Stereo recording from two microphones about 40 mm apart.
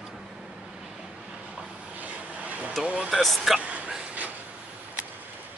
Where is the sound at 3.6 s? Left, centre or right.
Right.